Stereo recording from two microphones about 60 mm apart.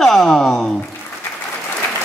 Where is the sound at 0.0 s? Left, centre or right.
Centre.